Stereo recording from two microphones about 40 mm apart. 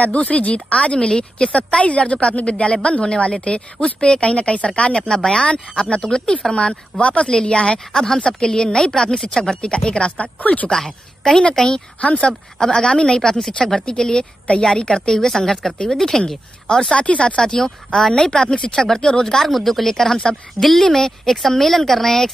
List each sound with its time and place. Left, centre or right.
0.0 s speech: left
0.9 s a woman's voice: centre
6.5 s a woman's voice: left
7.9 s a woman's voice: centre
8.2 s a woman's voice: left
10.2 s speech: left
10.7 s a woman's voice: centre
12.0 s a woman's voice: left; by 16.3 s centre
16.9 s a woman's voice: left
17.6 s a woman's voice: centre